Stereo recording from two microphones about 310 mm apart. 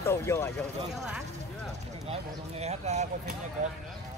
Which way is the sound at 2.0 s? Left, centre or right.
Centre.